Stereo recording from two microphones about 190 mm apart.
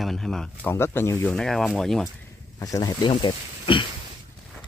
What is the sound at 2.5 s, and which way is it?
Speech, 20° left (ahead or behind).